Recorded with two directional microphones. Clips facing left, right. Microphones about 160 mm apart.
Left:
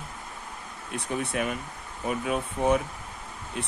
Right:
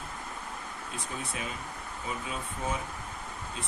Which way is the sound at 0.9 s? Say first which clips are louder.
Left 10 dB; 65° left (ahead or behind).